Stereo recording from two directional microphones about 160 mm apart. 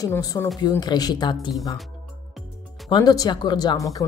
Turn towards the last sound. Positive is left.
turn(degrees=20)  # may be behind; listen again after turning